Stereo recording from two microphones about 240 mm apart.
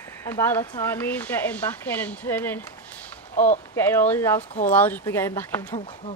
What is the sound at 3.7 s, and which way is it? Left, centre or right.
Speech, centre.